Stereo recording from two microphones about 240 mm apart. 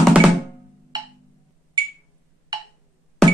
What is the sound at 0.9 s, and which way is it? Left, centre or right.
Music, centre.